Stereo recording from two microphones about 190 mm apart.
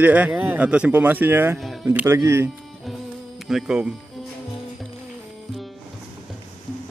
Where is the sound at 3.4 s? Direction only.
5° right (ahead or behind).